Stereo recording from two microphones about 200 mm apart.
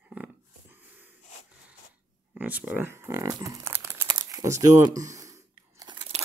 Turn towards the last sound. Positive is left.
turn(degrees=-20)  # may be behind; listen again after turning